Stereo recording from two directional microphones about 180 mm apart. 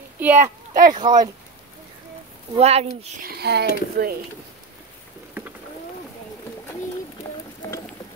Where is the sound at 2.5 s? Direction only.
35° right (ahead or behind).